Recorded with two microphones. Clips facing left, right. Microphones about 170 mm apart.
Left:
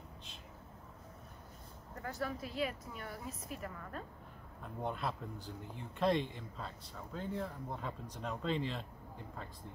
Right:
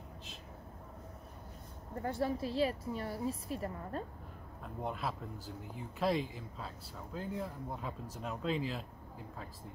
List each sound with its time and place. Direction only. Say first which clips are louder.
2.0 s a woman's voice: right 6 dB; 30° right (ahead or behind)
4.8 s speech: even; centre (ahead or behind)